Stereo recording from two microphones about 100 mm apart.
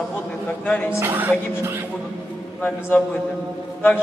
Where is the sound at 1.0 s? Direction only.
25° right (ahead or behind).